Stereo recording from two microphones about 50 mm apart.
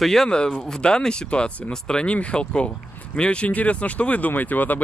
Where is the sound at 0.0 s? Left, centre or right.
Centre.